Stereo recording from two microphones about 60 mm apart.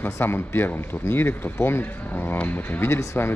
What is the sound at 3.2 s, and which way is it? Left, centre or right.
Speech, left.